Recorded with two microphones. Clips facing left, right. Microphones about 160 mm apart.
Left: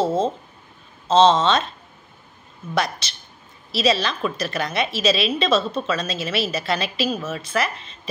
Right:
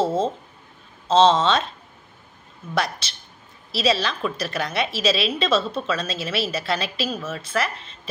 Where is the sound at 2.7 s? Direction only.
5° right (ahead or behind).